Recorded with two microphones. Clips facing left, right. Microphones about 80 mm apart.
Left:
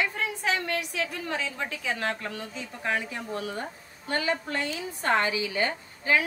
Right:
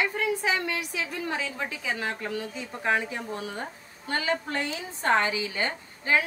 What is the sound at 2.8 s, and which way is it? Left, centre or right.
A woman's voice, right.